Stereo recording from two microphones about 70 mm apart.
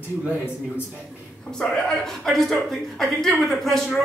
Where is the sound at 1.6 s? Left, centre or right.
Centre.